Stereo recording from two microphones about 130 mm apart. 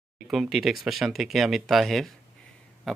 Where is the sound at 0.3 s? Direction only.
Centre (ahead or behind).